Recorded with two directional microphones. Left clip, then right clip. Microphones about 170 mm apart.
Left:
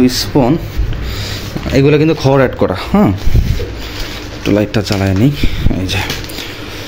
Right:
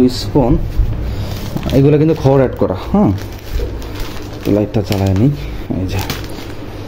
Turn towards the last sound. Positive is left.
turn(degrees=-5)  # may be behind; listen again after turning